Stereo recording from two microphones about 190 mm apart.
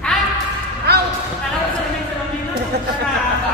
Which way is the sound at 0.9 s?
60° right (ahead or behind).